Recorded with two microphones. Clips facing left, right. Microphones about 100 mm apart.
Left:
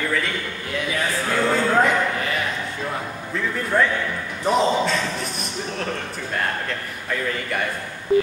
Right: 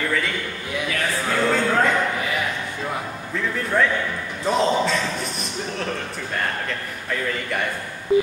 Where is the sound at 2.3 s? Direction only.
15° right (ahead or behind).